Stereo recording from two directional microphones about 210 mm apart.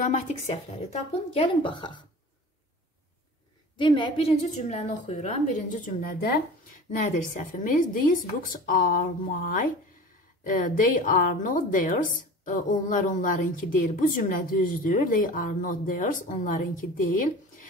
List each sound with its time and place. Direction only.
0.3 s speech: 30° left (ahead or behind)
3.7 s a woman's voice: 25° left (ahead or behind); by 17.6 s 40° left (ahead or behind)